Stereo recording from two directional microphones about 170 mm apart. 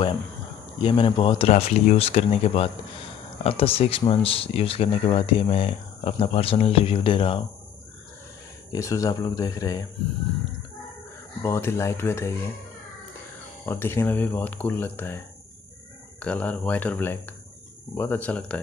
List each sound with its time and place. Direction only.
0.8 s speech: 30° left (ahead or behind)
8.7 s speech: 20° left (ahead or behind)
11.4 s speech: 15° left (ahead or behind)
13.7 s speech: 15° left (ahead or behind)